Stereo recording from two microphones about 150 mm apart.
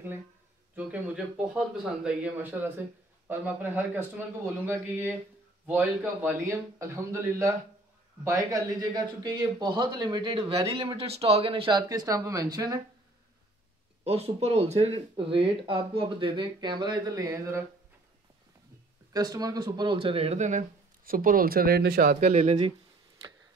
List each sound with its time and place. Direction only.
0.7 s a man's voice: 10° right (ahead or behind); by 12.7 s 25° right (ahead or behind)
14.0 s speech: 45° right (ahead or behind); by 17.6 s 20° right (ahead or behind)
19.1 s speech: 25° right (ahead or behind); by 22.6 s 50° right (ahead or behind)